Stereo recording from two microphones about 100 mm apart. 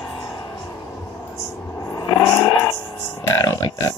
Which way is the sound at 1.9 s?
35° left (ahead or behind).